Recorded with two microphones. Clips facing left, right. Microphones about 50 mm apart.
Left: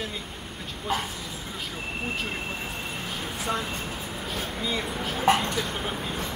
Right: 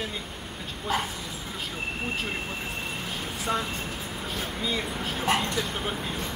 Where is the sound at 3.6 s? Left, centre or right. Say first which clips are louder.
Even; left.